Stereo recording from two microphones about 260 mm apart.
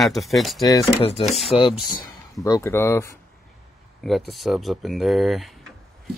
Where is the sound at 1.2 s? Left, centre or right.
Centre.